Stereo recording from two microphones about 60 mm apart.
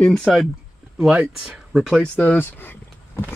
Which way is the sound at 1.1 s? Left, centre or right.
Right.